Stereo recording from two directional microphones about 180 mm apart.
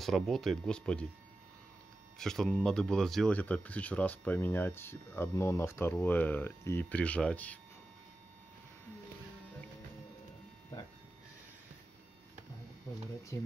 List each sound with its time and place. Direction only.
0.0 s speech: centre (ahead or behind)
2.1 s speech: centre (ahead or behind)
13.3 s speech: 15° left (ahead or behind)